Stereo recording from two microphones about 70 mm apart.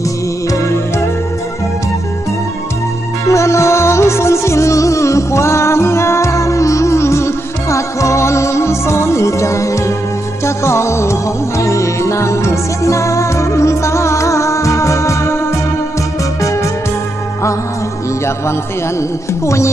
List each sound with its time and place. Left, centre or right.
0.5 s music: left
3.3 s music: left
19.4 s speech: left